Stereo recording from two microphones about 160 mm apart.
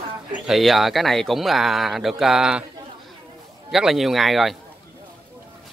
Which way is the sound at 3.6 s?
Centre (ahead or behind).